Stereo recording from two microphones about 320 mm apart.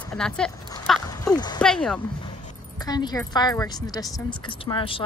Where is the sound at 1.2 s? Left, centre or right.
Centre.